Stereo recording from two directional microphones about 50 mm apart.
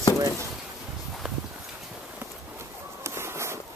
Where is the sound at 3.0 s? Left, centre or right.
Right.